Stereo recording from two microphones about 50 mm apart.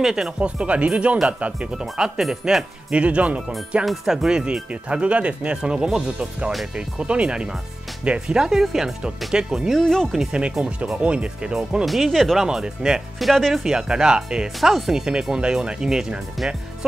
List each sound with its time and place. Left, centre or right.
0.0 s speech: centre
0.4 s speech: right
1.8 s speech: centre
2.9 s speech: right
3.8 s speech: centre; by 8.4 s right
8.4 s speech: centre
9.7 s speech: centre
10.1 s speech: centre
11.8 s speech: centre
12.4 s speech: centre
13.2 s speech: centre
13.7 s speech: centre
14.6 s speech: centre
14.9 s speech: centre